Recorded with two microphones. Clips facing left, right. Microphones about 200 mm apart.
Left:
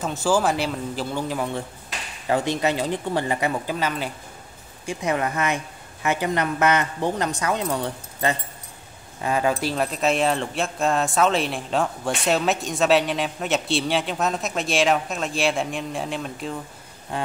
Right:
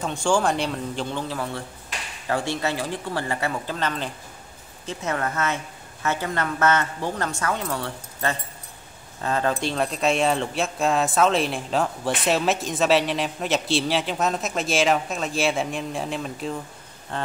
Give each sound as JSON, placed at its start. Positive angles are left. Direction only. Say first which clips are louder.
{"t": 0.0, "sound": "speech", "louder": "left 1 dB", "side_deg": 5}
{"t": 1.3, "sound": "speech", "louder": "left 3 dB", "side_deg": 15}
{"t": 17.1, "sound": "speech", "louder": "left 2 dB", "side_deg": 10}